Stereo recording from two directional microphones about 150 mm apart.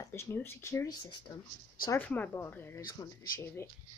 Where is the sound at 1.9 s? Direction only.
10° left (ahead or behind).